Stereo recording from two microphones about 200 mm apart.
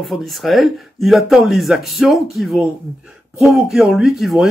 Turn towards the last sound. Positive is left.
turn(degrees=0)  # may be behind; listen again after turning